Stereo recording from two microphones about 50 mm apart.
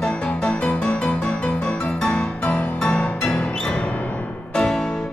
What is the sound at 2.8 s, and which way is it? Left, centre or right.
Music, left.